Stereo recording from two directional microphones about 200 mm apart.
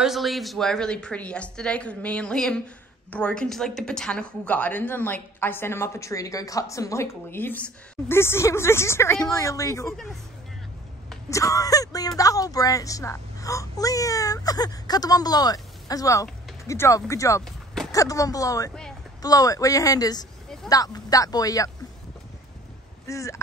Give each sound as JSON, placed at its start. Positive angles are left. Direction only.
{"t": 0.0, "sound": "a woman's voice", "side_deg": 0}
{"t": 11.2, "sound": "a woman's voice", "side_deg": 15}
{"t": 23.0, "sound": "a woman's voice", "side_deg": 15}